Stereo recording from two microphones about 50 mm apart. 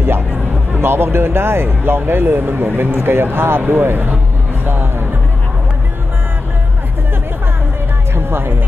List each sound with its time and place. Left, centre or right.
0.7 s speech: right
4.6 s music: right
8.1 s music: right